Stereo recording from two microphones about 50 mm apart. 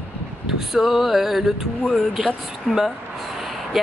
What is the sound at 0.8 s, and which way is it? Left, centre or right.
Music, centre.